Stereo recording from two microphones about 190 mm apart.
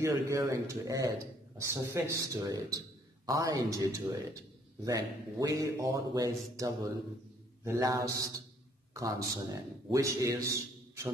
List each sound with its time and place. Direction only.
0.0 s a man's voice: 15° right (ahead or behind)